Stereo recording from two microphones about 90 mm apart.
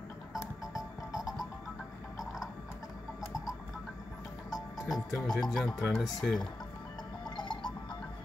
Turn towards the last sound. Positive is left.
turn(degrees=65)  # may be behind; listen again after turning